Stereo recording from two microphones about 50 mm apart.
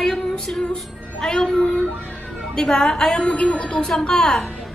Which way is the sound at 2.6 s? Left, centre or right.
Centre.